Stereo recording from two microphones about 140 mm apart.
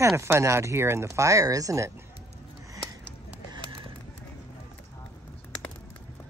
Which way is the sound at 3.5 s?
35° right (ahead or behind).